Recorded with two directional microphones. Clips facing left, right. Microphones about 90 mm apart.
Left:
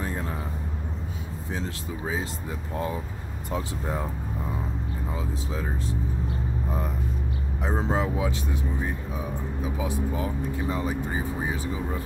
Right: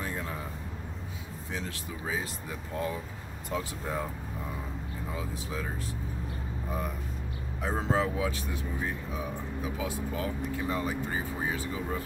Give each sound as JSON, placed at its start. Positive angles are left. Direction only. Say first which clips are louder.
{"t": 0.0, "sound": "vehicle", "louder": "left 4 dB", "side_deg": 30}
{"t": 1.5, "sound": "speech", "louder": "left 4 dB", "side_deg": 25}
{"t": 3.5, "sound": "speech", "louder": "left 3 dB", "side_deg": 30}
{"t": 5.1, "sound": "speech", "louder": "left 3 dB", "side_deg": 25}
{"t": 7.6, "sound": "speech", "louder": "left 2 dB", "side_deg": 20}